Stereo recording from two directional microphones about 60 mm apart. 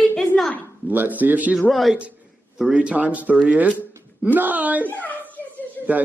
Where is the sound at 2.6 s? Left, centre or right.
Centre.